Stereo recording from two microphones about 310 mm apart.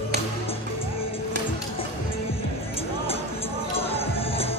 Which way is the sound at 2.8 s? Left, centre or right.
Centre.